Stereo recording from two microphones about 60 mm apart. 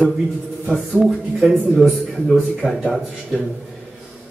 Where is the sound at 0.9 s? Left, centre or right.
Centre.